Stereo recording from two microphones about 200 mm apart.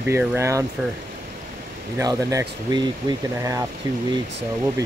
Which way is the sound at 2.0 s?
15° right (ahead or behind).